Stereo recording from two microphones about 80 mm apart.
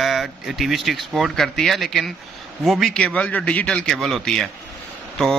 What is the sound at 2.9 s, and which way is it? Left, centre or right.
Speech, centre.